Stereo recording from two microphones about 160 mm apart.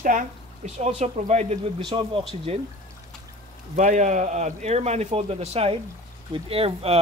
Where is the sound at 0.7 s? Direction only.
45° right (ahead or behind).